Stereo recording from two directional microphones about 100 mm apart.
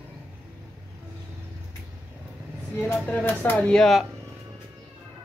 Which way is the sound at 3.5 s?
5° left (ahead or behind).